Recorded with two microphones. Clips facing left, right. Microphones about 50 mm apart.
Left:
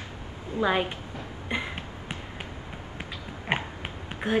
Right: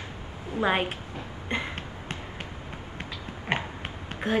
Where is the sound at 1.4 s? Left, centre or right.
Centre.